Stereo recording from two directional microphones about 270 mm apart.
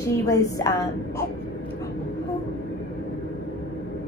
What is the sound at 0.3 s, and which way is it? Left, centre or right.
Speech, centre.